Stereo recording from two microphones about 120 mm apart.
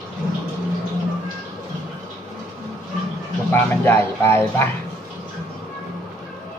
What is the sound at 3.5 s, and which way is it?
Speech, 20° left (ahead or behind).